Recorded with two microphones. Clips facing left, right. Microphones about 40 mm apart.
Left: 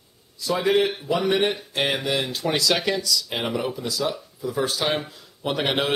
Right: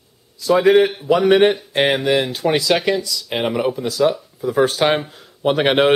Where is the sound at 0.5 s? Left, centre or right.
Right.